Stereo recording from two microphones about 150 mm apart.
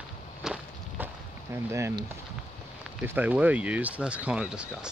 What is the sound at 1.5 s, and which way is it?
Speech, 20° right (ahead or behind).